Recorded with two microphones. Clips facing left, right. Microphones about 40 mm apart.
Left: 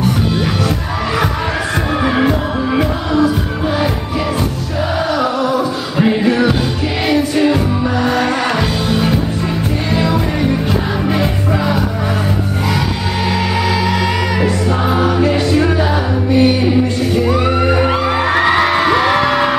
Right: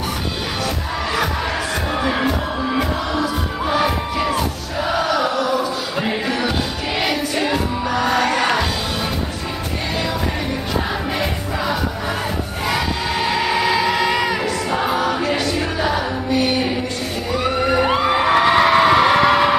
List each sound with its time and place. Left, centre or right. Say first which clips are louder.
2.0 s music: left 6 dB; centre
5.4 s a sound: left 4 dB; left
5.9 s music: left 10 dB; centre
11.1 s music: left 6 dB; centre
13.3 s music: left 1 dB; centre
17.3 s music: left 4 dB; centre
17.8 s music: left 2 dB; centre